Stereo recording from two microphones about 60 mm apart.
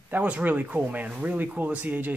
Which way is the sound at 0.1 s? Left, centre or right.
Right.